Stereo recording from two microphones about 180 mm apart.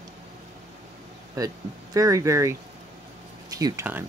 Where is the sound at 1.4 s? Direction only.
20° right (ahead or behind).